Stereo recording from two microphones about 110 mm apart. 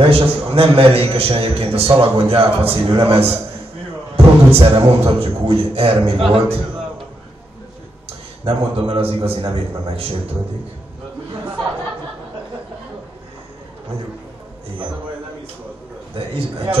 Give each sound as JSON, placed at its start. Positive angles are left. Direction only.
{"t": 0.0, "sound": "a man's voice", "side_deg": -55}
{"t": 4.5, "sound": "a man's voice", "side_deg": -60}
{"t": 8.5, "sound": "a man's voice", "side_deg": -50}
{"t": 16.2, "sound": "a man's voice", "side_deg": -55}